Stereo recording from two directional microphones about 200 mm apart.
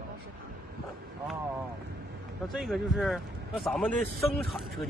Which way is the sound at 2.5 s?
Centre (ahead or behind).